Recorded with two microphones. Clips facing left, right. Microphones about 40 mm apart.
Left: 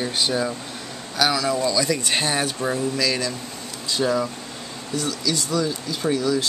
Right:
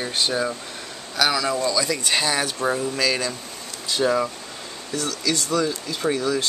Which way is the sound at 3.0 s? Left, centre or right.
Right.